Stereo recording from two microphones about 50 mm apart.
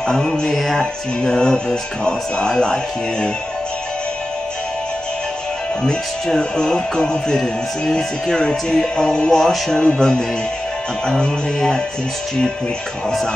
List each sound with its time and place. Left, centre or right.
0.0 s speech: centre
0.6 s music: centre
1.2 s speech: centre
5.9 s speech: centre